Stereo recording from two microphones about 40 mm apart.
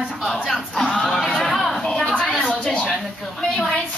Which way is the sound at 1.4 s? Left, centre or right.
Centre.